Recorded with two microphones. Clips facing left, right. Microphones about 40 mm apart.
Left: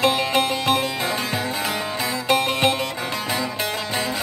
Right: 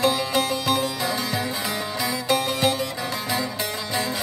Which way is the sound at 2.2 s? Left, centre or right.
Left.